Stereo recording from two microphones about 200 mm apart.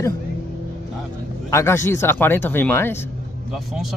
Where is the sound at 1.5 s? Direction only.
15° left (ahead or behind).